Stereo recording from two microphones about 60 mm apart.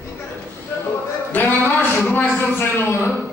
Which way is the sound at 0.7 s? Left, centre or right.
Left.